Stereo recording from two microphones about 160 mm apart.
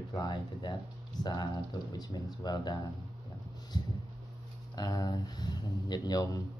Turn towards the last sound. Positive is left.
turn(degrees=25)  # may be behind; listen again after turning